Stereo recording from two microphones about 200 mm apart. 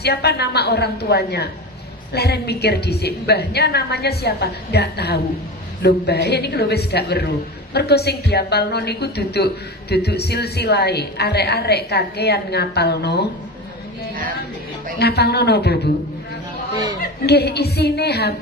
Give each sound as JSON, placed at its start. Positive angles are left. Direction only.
{"t": 0.0, "sound": "a woman's voice", "side_deg": 55}
{"t": 15.0, "sound": "a woman's voice", "side_deg": 55}
{"t": 17.0, "sound": "a woman's voice", "side_deg": 55}